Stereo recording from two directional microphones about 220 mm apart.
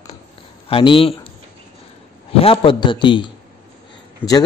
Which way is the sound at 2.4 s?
25° left (ahead or behind).